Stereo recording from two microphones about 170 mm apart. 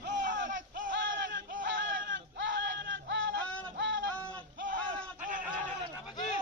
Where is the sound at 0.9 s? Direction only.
90° right.